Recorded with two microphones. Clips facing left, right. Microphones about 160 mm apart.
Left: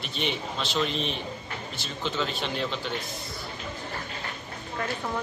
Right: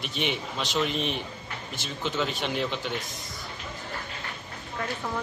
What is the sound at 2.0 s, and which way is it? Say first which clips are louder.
Speech: right 1 dB; 10° right (ahead or behind).